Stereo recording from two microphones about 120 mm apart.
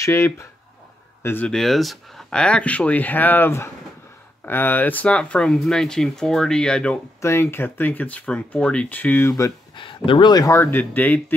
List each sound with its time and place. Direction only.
0.0 s speech: 25° left (ahead or behind)
1.5 s speech: centre (ahead or behind)
7.2 s speech: 20° left (ahead or behind)
9.8 s speech: 40° left (ahead or behind); by 11.3 s 15° left (ahead or behind)